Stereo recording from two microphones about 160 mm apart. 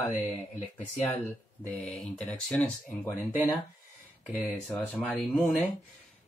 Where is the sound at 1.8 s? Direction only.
5° left (ahead or behind).